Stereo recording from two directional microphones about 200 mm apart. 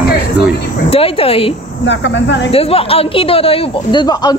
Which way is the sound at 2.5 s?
30° left (ahead or behind).